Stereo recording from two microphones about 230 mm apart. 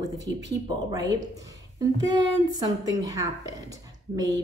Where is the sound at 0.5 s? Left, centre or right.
Centre.